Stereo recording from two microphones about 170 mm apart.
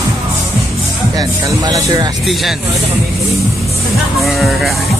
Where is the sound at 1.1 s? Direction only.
20° right (ahead or behind).